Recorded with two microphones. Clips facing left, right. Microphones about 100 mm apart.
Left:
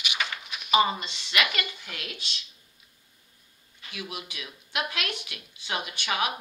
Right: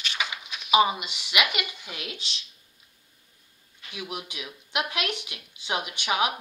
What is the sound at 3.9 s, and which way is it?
A woman's voice, 20° right (ahead or behind).